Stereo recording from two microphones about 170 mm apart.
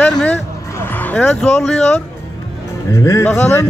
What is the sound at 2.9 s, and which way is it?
Speech, 15° left (ahead or behind).